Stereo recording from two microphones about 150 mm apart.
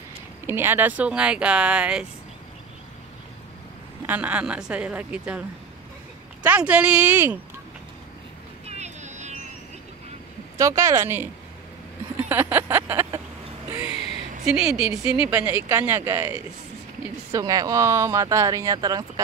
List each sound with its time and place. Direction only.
0.5 s speech: 15° right (ahead or behind)
4.0 s speech: 10° right (ahead or behind)
6.4 s speech: 10° right (ahead or behind)
8.6 s a sound: 50° right (ahead or behind)
10.6 s speech: 20° right (ahead or behind)
12.3 s vehicle: 15° right (ahead or behind)
13.7 s a sound: 10° right (ahead or behind)
14.4 s a woman's voice: 5° right (ahead or behind); by 19.0 s 25° right (ahead or behind)